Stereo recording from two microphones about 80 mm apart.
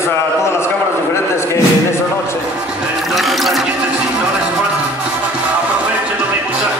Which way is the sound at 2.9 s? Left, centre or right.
Centre.